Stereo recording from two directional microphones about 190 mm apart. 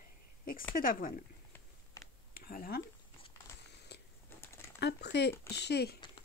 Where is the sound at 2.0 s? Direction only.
15° left (ahead or behind).